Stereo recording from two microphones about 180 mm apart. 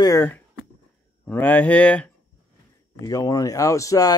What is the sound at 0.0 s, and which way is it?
Speech, 15° left (ahead or behind).